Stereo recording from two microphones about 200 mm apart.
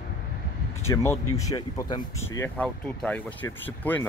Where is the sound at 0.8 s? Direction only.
15° left (ahead or behind).